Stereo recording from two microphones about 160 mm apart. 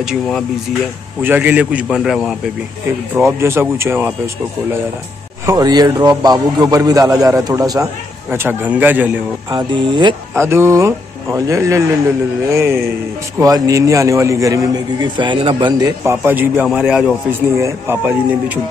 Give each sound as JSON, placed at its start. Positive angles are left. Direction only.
{"t": 1.2, "sound": "a man's voice", "side_deg": -10}
{"t": 3.2, "sound": "a man's voice", "side_deg": -15}
{"t": 5.5, "sound": "a man's voice", "side_deg": -25}
{"t": 9.5, "sound": "a man's voice", "side_deg": -25}
{"t": 10.3, "sound": "a man's voice", "side_deg": -15}
{"t": 16.1, "sound": "a man's voice", "side_deg": -10}
{"t": 17.6, "sound": "a man's voice", "side_deg": -15}